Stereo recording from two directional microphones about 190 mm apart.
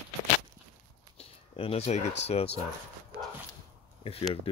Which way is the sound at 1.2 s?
30° left (ahead or behind).